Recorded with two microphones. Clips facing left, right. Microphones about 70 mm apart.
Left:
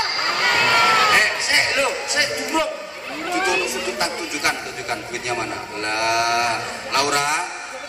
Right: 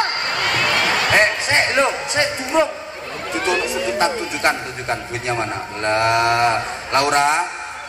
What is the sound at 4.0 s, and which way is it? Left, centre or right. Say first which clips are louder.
A man's voice: right 6 dB; right.